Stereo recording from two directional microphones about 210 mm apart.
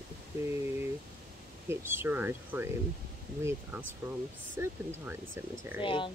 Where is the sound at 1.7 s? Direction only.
10° right (ahead or behind).